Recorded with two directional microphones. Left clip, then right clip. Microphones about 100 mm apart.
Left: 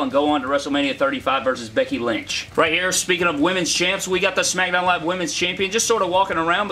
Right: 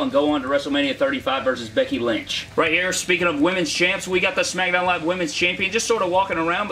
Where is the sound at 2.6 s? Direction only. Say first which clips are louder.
Left 1 dB; 30° left (ahead or behind).